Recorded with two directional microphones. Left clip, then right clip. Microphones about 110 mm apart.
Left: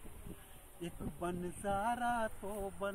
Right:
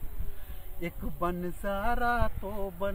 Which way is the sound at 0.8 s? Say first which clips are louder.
Right 9 dB; 20° right (ahead or behind).